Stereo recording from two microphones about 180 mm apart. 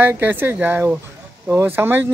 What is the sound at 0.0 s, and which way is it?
Speech, 10° right (ahead or behind).